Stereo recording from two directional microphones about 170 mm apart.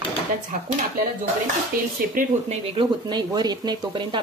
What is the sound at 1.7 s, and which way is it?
Cutlery, 55° right (ahead or behind).